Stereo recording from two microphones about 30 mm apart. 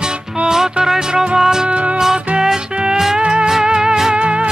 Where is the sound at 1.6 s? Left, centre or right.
Right.